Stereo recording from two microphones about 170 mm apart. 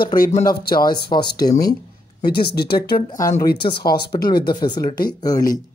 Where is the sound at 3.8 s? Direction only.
65° left (ahead or behind).